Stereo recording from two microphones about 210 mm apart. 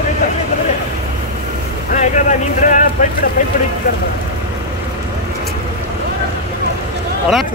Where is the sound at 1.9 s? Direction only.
35° left (ahead or behind).